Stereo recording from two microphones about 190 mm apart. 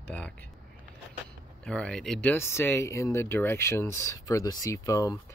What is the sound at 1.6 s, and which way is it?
Speech, 5° left (ahead or behind).